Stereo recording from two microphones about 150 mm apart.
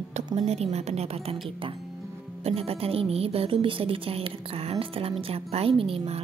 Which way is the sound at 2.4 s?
40° right (ahead or behind).